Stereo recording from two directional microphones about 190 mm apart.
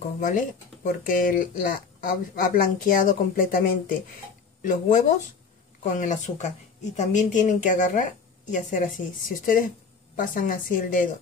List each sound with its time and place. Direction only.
0.2 s speech: 40° left (ahead or behind)